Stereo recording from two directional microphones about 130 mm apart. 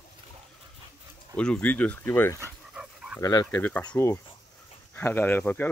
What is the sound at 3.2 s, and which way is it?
Speech, 30° left (ahead or behind).